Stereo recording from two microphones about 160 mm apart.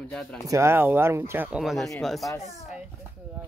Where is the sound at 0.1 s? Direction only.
5° left (ahead or behind).